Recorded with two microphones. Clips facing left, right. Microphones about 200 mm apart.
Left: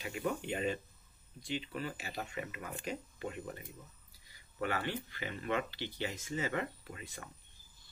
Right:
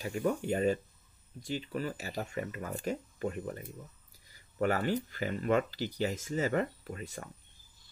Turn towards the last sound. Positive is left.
turn(degrees=-40)  # may be behind; listen again after turning